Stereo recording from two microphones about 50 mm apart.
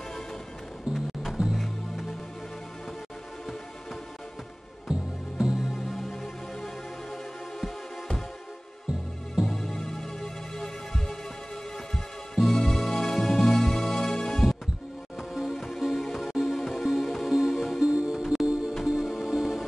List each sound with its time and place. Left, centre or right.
0.9 s music: centre
4.9 s music: centre
5.7 s music: centre
9.5 s music: centre
15.1 s music: centre
17.9 s music: centre
18.2 s music: centre